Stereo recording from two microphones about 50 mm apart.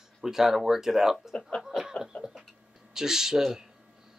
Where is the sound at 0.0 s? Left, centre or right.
Centre.